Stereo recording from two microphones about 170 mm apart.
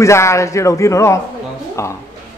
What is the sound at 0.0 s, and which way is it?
Speech, 15° left (ahead or behind).